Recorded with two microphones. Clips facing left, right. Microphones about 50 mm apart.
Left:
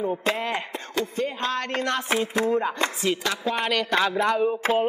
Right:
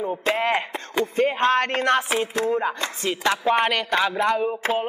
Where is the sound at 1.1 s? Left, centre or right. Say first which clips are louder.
Right 11 dB; right.